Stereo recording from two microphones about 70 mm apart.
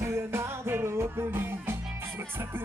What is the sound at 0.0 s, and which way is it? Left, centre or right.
Music, right.